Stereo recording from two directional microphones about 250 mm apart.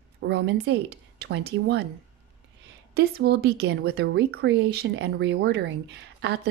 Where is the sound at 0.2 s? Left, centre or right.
Right.